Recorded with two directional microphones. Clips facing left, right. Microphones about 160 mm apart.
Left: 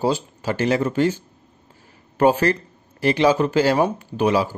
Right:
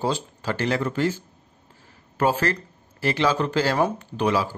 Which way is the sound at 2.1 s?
20° left (ahead or behind).